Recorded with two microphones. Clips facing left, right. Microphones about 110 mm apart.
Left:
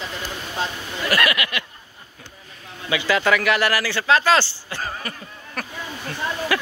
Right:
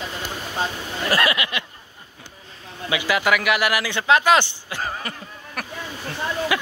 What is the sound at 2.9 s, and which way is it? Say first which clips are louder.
Speech: left 1 dB; 15° right (ahead or behind).